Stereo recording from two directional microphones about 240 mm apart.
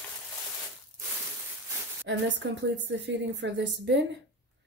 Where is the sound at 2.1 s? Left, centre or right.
Right.